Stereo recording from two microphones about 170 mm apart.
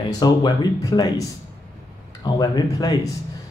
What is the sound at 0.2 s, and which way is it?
Speech, 25° left (ahead or behind).